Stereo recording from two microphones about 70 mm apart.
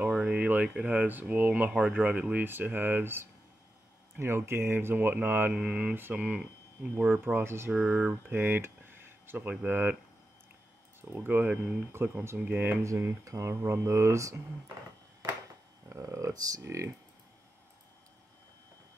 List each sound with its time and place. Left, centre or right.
0.2 s speech: centre
5.5 s speech: centre
7.3 s speech: right
7.7 s speech: centre
11.1 s speech: right
12.8 s speech: right
15.9 s speech: right
16.6 s speech: right